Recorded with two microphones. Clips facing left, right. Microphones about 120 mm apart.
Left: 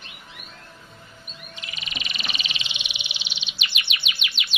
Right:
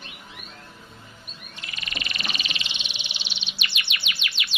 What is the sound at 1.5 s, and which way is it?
Frog, 20° left (ahead or behind).